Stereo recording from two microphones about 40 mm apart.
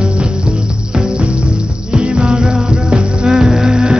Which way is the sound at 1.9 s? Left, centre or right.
Right.